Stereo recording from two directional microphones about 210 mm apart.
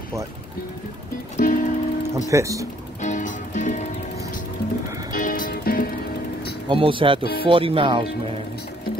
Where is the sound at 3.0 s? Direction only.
35° left (ahead or behind).